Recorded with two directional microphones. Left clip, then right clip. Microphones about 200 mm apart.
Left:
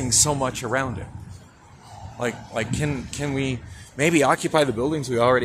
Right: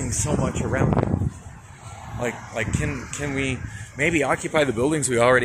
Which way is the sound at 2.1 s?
15° left (ahead or behind).